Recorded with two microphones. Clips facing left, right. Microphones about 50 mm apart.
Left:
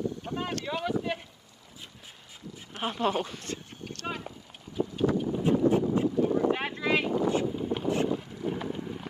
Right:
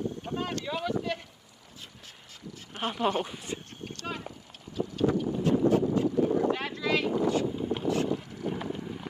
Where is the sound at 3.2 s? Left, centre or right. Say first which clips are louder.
Even; centre.